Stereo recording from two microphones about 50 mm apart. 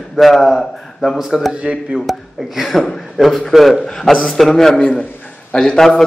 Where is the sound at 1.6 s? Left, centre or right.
Centre.